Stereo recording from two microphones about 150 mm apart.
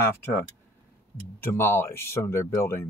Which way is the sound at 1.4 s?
15° left (ahead or behind).